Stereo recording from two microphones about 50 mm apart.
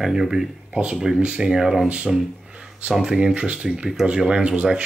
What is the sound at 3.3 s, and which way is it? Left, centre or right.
Speech, right.